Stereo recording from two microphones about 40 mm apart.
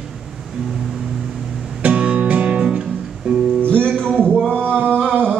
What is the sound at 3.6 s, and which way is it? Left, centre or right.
Music, left.